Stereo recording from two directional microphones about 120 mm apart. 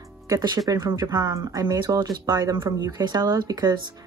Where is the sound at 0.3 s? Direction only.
30° right (ahead or behind).